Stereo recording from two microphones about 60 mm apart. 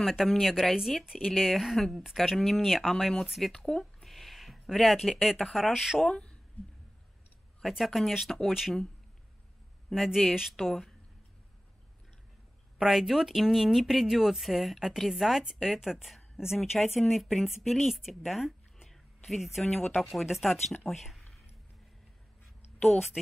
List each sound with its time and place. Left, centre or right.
0.0 s speech: centre
6.0 s speech: centre
7.6 s speech: centre
9.8 s speech: centre
12.7 s speech: centre
18.9 s a sound: centre
19.7 s speech: left
20.0 s speech: centre
22.8 s speech: centre